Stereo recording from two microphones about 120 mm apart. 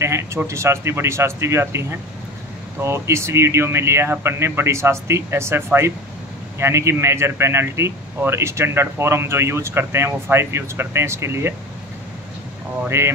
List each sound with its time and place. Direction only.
0.0 s speech: 25° right (ahead or behind)
12.8 s speech: 20° right (ahead or behind)